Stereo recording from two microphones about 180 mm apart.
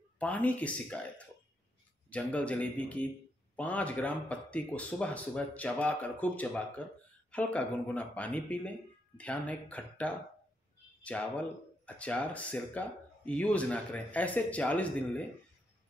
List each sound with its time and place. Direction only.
0.2 s speech: 10° left (ahead or behind)